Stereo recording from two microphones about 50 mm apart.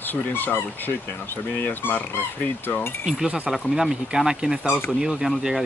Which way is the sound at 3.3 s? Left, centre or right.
Centre.